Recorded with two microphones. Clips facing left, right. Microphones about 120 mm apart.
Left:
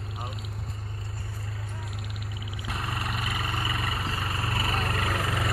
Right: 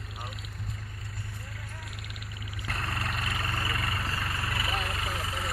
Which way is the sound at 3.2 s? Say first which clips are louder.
Left 2 dB; 20° left (ahead or behind).